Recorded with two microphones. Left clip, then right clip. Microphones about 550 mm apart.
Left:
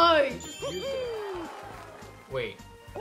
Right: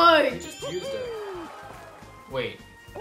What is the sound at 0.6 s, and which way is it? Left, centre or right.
Speech, centre.